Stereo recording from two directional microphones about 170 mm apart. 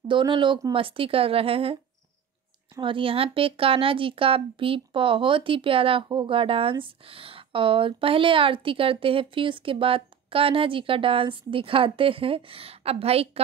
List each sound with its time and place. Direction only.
0.1 s speech: 30° right (ahead or behind)
2.8 s speech: 30° right (ahead or behind)